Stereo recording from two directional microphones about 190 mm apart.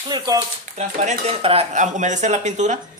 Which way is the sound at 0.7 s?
40° right (ahead or behind).